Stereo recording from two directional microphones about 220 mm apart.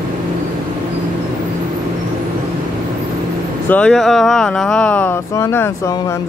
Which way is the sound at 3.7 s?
5° left (ahead or behind).